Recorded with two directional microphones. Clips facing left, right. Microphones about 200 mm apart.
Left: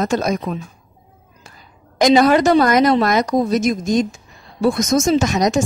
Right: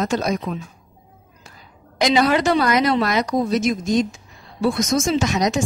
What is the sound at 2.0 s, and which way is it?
A woman's voice, 45° left (ahead or behind).